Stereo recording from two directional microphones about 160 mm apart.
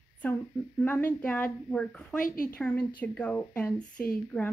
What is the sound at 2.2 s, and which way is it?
Speech, 60° left (ahead or behind).